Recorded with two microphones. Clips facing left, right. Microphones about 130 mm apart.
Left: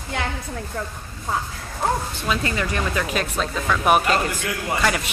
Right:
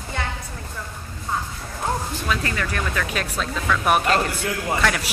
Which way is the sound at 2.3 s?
15° left (ahead or behind).